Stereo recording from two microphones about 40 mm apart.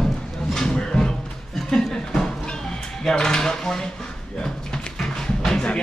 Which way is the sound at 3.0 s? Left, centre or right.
Centre.